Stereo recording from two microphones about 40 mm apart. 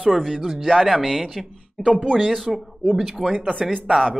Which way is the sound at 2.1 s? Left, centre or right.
Centre.